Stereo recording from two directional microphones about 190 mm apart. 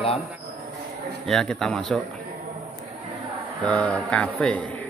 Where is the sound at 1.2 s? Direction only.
Centre (ahead or behind).